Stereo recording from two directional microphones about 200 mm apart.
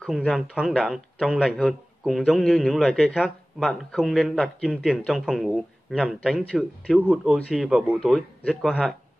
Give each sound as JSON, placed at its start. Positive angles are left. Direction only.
{"t": 0.0, "sound": "speech", "side_deg": 0}